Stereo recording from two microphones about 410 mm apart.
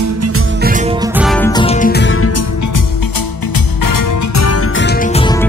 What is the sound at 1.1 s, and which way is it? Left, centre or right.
Music, centre.